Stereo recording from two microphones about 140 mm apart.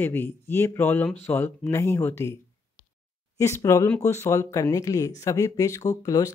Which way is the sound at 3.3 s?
20° left (ahead or behind).